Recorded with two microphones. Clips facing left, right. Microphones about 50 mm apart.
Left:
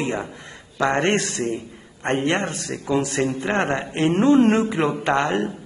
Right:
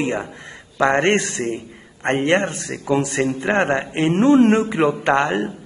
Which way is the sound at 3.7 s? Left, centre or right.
Centre.